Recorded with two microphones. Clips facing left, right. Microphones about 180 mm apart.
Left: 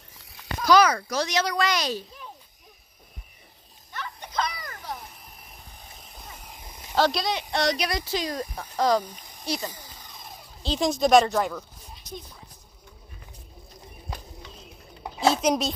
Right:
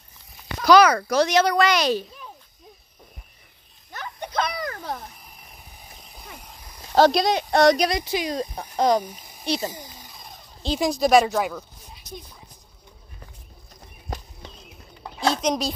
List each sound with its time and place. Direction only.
0.7 s a child's voice: 70° right (ahead or behind)
3.9 s a sound: 45° right (ahead or behind)
4.3 s a sound: 60° right (ahead or behind)
5.8 s vehicle: centre (ahead or behind)
7.0 s speech: 45° right (ahead or behind)
7.9 s speech: 15° right (ahead or behind)
9.7 s a sound: 10° right (ahead or behind)
10.6 s speech: 10° right (ahead or behind)
15.1 s speech: 5° left (ahead or behind)